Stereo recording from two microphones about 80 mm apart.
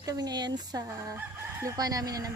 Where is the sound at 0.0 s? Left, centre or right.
Right.